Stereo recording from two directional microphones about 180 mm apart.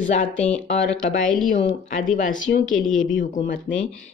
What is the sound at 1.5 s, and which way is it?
Speech, 40° left (ahead or behind).